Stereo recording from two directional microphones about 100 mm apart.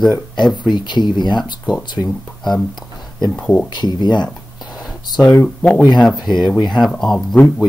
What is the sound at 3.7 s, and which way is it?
Speech, 45° left (ahead or behind).